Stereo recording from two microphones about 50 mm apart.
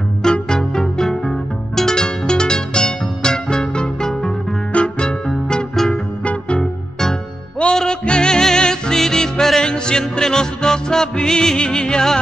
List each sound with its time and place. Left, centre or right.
0.2 s music: centre
7.7 s music: centre